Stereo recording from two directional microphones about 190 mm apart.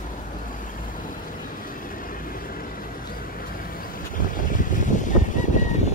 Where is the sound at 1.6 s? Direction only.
45° left (ahead or behind).